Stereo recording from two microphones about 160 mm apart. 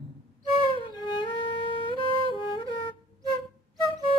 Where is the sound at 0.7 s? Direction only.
30° left (ahead or behind).